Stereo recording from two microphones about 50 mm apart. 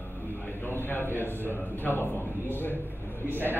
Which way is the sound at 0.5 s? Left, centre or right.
Left.